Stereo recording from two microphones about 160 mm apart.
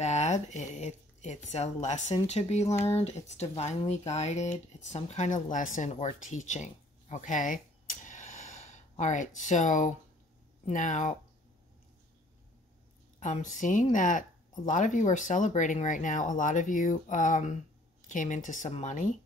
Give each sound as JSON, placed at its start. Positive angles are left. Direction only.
{"t": 0.0, "sound": "speech", "side_deg": 45}
{"t": 13.2, "sound": "speech", "side_deg": 50}